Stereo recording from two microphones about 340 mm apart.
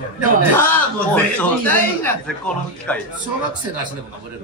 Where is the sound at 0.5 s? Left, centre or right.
Centre.